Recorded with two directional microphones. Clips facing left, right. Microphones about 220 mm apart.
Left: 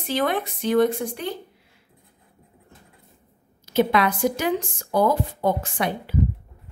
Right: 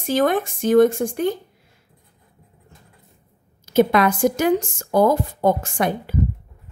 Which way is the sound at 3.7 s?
45° right (ahead or behind).